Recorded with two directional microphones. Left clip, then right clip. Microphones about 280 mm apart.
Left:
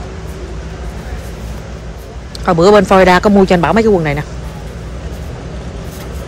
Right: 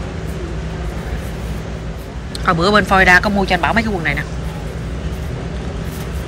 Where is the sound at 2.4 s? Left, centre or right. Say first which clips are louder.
Left 6 dB; centre.